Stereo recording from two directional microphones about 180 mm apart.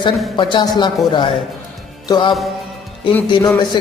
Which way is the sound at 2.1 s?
25° left (ahead or behind).